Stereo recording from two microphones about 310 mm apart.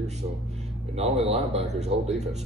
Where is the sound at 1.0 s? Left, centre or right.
Centre.